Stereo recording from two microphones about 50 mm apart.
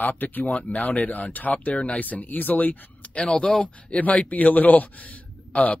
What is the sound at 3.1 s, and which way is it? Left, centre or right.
Speech, centre.